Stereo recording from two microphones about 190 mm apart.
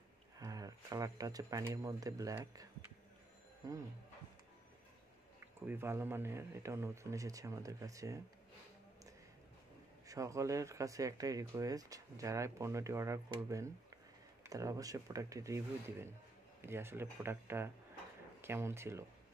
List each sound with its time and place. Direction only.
0.4 s speech: 20° right (ahead or behind)
5.7 s speech: 10° right (ahead or behind)
10.0 s speech: 15° right (ahead or behind)